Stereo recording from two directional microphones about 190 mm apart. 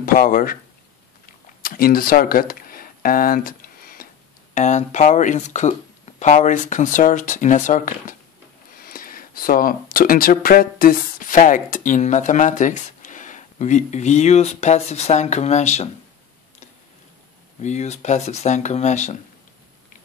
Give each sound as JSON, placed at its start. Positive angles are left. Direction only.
{"t": 0.0, "sound": "speech", "side_deg": 45}
{"t": 1.2, "sound": "a sound", "side_deg": 50}
{"t": 4.6, "sound": "speech", "side_deg": 40}
{"t": 17.6, "sound": "speech", "side_deg": 40}